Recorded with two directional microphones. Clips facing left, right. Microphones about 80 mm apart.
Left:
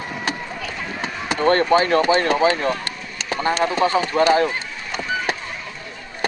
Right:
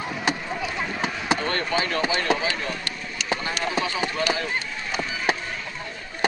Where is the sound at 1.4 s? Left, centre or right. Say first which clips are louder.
Left 9 dB; left.